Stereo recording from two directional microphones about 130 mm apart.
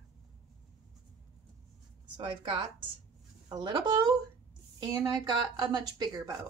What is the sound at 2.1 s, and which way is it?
Speech, 40° right (ahead or behind).